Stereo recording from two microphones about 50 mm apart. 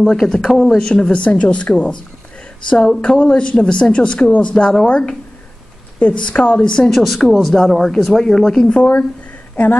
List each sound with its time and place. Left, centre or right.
0.1 s speech: centre
0.7 s speech: centre
3.0 s speech: centre
6.9 s speech: centre